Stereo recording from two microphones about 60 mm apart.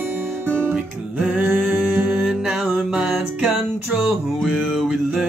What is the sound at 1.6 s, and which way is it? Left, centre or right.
Music, right.